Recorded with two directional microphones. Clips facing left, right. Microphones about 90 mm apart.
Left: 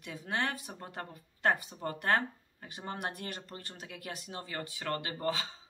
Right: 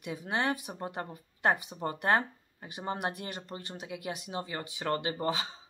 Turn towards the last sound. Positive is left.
turn(degrees=-20)  # may be behind; listen again after turning